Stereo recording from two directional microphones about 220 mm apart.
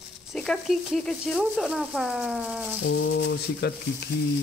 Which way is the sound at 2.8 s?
55° left (ahead or behind).